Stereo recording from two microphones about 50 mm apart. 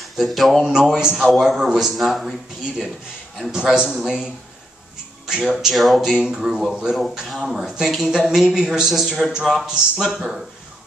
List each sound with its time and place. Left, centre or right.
0.0 s a man's voice: centre
3.5 s a man's voice: centre
5.3 s a man's voice: centre